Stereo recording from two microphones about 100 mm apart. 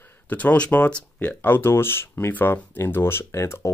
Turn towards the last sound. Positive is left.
turn(degrees=30)  # may be behind; listen again after turning